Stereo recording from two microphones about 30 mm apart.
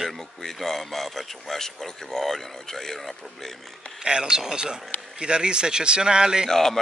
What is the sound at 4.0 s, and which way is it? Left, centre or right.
Speech, right.